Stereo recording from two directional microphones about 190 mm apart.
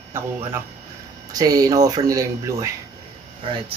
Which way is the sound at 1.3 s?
20° right (ahead or behind).